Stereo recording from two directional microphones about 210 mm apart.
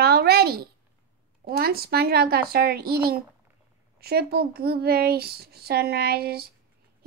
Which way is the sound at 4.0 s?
50° right (ahead or behind).